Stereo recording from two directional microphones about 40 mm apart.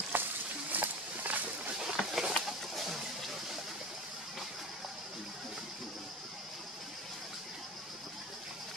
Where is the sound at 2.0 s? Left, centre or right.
Centre.